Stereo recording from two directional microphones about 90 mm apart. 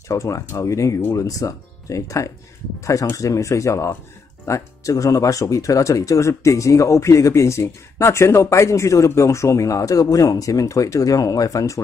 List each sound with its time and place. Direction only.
0.1 s speech: 35° left (ahead or behind)